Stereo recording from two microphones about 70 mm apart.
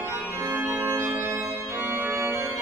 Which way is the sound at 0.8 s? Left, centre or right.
Right.